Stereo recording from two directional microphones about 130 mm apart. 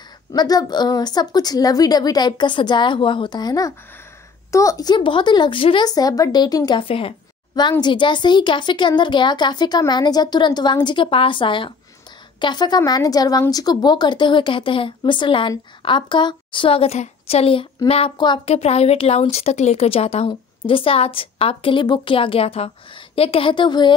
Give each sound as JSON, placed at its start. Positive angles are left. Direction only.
{"t": 0.3, "sound": "speech", "side_deg": 30}
{"t": 5.9, "sound": "speech", "side_deg": 30}
{"t": 18.1, "sound": "speech", "side_deg": 35}
{"t": 18.5, "sound": "a woman's voice", "side_deg": 55}